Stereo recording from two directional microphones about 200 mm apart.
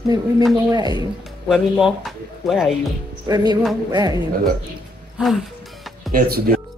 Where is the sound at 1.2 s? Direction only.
Centre (ahead or behind).